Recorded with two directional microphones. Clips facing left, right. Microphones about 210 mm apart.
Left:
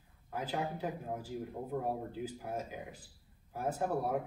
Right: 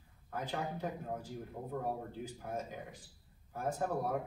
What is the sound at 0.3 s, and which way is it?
A man's voice, 10° left (ahead or behind).